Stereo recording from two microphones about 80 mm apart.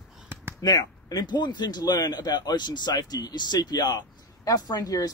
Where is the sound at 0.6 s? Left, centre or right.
Left.